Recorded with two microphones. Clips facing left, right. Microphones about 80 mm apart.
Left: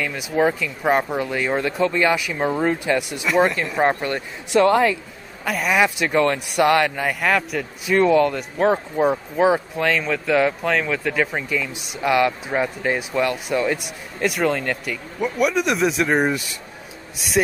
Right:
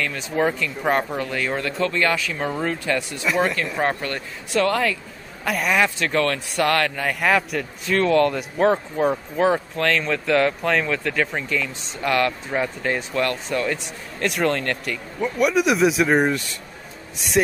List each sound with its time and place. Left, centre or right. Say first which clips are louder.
0.0 s speech: left 2 dB; centre
3.3 s speech: left 3 dB; centre
4.0 s speech: left 3 dB; centre
5.4 s speech: even; centre
5.8 s speech: left 5 dB; centre
7.2 s speech: right 2 dB; centre
7.9 s speech: left 3 dB; centre
8.2 s speech: even; centre